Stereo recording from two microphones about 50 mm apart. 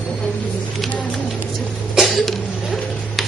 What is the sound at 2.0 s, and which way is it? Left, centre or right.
Cough, centre.